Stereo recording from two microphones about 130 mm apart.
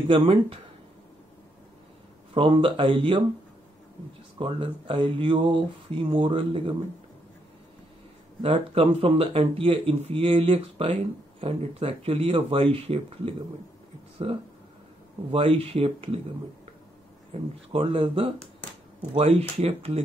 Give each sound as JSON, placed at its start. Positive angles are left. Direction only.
{"t": 0.1, "sound": "speech", "side_deg": -45}
{"t": 2.3, "sound": "speech", "side_deg": -40}
{"t": 4.4, "sound": "speech", "side_deg": -40}
{"t": 8.4, "sound": "speech", "side_deg": -45}
{"t": 15.3, "sound": "speech", "side_deg": -45}
{"t": 17.3, "sound": "speech", "side_deg": -45}